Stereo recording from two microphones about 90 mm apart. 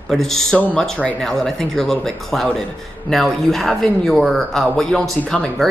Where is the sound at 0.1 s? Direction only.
5° left (ahead or behind).